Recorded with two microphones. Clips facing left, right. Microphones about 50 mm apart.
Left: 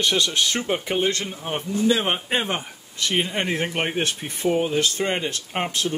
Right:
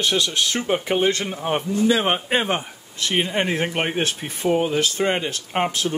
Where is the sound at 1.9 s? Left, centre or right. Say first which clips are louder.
Right 3 dB; centre.